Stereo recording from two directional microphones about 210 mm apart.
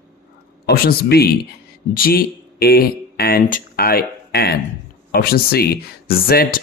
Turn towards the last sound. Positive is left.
turn(degrees=45)  # may be behind; listen again after turning